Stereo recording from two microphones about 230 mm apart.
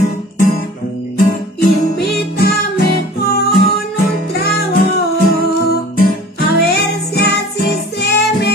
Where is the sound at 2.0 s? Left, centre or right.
Left.